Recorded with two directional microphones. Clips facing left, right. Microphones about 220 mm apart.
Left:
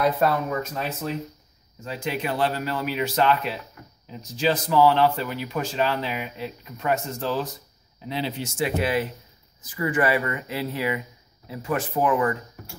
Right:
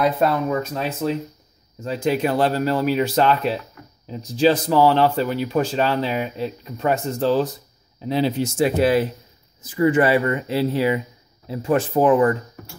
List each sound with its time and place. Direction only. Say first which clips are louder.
0.2 s speech: right 3 dB; 35° right (ahead or behind)
9.6 s speech: right 7 dB; 25° right (ahead or behind)